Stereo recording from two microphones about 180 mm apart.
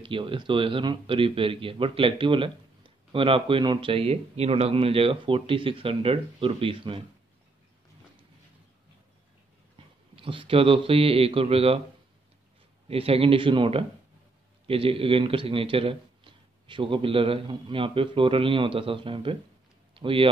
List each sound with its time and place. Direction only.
0.0 s speech: 30° right (ahead or behind)
10.1 s speech: 30° right (ahead or behind)
12.8 s speech: 35° right (ahead or behind)
19.9 s a sound: 30° right (ahead or behind)